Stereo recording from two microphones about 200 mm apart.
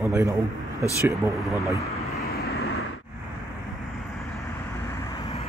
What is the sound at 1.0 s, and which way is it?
Speech, 10° right (ahead or behind).